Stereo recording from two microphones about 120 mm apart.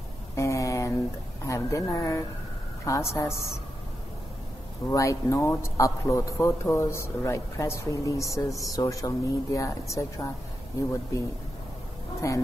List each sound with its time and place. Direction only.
0.4 s a sound: 25° left (ahead or behind)
1.5 s a man's voice: 25° left (ahead or behind)
4.9 s a man's voice: 25° left (ahead or behind)
12.2 s a man's voice: 25° left (ahead or behind)